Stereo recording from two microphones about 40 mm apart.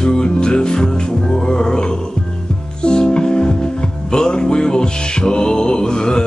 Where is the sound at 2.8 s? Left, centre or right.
Left.